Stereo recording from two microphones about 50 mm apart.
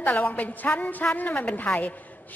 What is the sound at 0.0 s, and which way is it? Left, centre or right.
A woman's voice, left.